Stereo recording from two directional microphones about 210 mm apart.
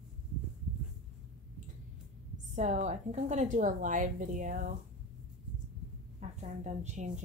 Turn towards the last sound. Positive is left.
turn(degrees=-35)  # may be behind; listen again after turning